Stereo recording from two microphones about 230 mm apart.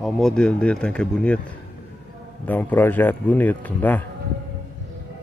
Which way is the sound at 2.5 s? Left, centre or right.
Centre.